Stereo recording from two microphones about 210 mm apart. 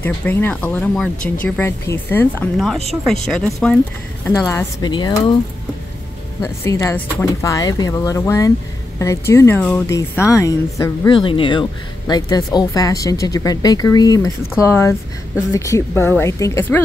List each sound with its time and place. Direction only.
0.0 s speech: 10° left (ahead or behind)
4.3 s speech: 15° left (ahead or behind)
6.4 s a woman's voice: 10° left (ahead or behind)